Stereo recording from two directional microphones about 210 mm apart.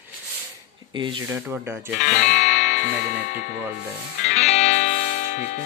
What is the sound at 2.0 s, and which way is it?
Music, 35° left (ahead or behind).